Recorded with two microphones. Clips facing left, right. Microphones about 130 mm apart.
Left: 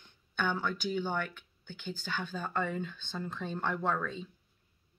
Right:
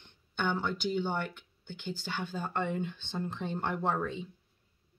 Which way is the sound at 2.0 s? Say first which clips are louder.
Even; 15° right (ahead or behind).